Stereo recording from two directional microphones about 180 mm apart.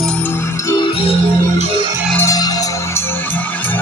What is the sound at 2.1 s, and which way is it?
Music, 20° left (ahead or behind).